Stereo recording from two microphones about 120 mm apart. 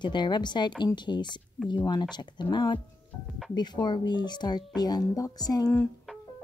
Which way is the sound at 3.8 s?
35° left (ahead or behind).